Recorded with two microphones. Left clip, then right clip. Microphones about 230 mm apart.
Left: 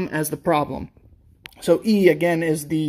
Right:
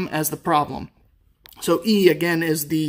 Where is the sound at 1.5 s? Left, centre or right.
Right.